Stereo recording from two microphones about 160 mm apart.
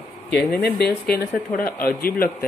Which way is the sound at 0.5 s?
80° left.